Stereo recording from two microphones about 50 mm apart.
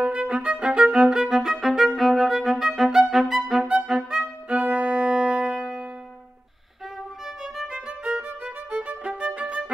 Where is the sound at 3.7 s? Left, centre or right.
Centre.